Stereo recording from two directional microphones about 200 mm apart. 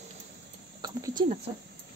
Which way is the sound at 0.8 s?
20° right (ahead or behind).